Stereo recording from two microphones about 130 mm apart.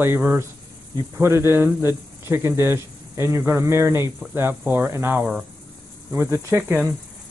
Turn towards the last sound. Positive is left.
turn(degrees=-15)  # may be behind; listen again after turning